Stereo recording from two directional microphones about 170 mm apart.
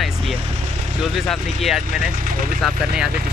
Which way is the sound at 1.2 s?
Centre (ahead or behind).